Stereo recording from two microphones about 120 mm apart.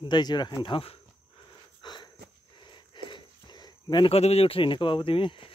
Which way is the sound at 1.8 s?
40° left (ahead or behind).